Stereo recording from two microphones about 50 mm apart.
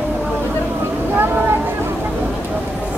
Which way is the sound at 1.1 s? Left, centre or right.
Right.